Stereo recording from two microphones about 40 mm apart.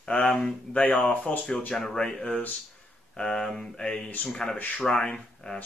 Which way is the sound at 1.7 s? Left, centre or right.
Centre.